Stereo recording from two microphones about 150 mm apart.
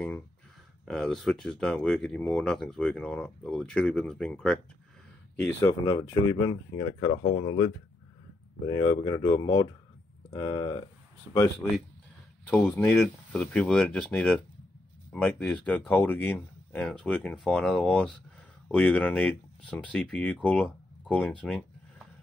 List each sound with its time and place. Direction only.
0.8 s speech: 5° left (ahead or behind)
5.7 s speech: 25° left (ahead or behind)
12.4 s speech: centre (ahead or behind)